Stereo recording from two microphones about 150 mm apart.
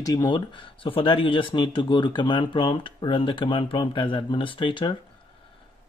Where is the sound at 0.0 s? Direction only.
25° left (ahead or behind).